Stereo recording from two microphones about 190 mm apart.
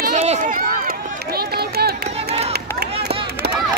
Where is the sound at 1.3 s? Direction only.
55° right (ahead or behind).